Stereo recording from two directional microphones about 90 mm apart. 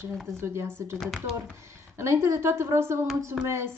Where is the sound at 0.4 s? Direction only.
30° right (ahead or behind).